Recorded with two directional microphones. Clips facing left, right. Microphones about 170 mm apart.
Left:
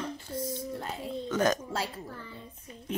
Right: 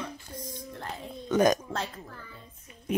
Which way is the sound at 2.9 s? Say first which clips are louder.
Right 6 dB; 10° right (ahead or behind).